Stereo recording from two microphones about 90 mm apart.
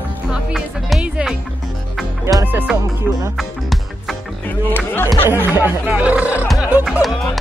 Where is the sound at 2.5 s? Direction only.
20° right (ahead or behind).